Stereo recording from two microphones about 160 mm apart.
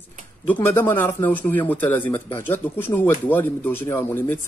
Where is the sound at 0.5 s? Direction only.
10° left (ahead or behind).